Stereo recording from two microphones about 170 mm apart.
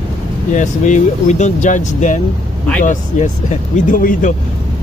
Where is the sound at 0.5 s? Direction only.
45° left (ahead or behind).